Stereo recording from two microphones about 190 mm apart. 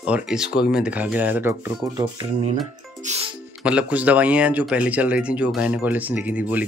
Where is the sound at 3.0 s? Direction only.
35° right (ahead or behind).